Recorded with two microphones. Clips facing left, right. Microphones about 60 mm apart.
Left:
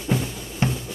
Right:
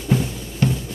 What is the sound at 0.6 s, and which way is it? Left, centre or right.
Drum, left.